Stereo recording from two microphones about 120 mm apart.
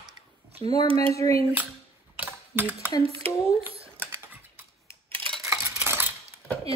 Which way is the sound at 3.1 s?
50° right (ahead or behind).